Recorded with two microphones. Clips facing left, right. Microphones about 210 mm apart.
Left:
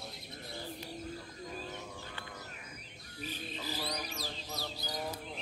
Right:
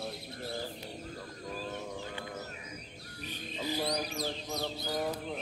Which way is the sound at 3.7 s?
40° right (ahead or behind).